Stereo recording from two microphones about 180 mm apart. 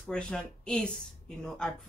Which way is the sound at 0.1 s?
5° left (ahead or behind).